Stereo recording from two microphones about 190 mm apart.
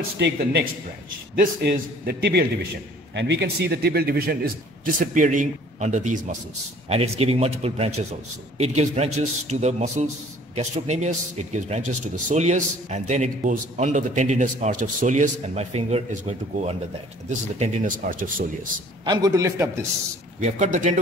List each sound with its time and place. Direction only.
0.2 s a man's voice: 60° right (ahead or behind); by 18.7 s 45° right (ahead or behind)
19.0 s a man's voice: 20° right (ahead or behind)
20.3 s a man's voice: 40° right (ahead or behind)